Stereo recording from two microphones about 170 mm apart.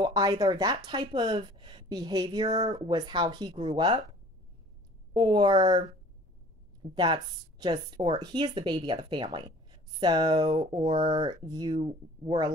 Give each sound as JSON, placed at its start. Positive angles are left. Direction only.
{"t": 0.0, "sound": "speech", "side_deg": -25}
{"t": 5.1, "sound": "speech", "side_deg": -25}